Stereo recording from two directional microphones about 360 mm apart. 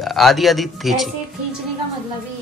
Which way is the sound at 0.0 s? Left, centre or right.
Centre.